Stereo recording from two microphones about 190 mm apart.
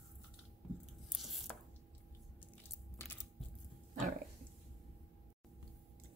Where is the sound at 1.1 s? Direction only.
Centre (ahead or behind).